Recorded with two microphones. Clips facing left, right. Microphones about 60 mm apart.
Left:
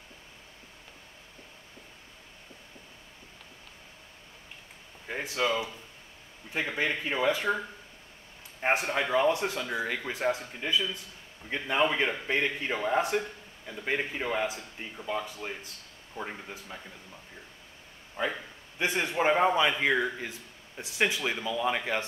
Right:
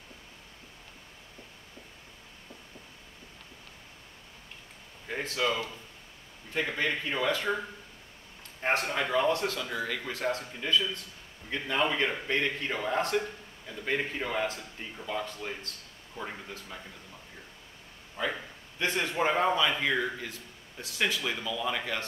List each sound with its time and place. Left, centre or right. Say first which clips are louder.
5.0 s speech: left 1 dB; centre
6.5 s a man's voice: even; centre
8.5 s a man's voice: left 1 dB; centre
18.2 s a man's voice: left 1 dB; left